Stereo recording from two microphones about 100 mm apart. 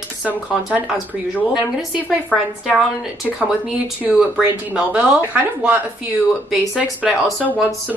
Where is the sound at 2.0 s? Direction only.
Centre (ahead or behind).